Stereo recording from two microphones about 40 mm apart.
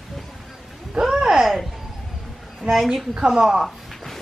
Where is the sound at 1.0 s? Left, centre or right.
Centre.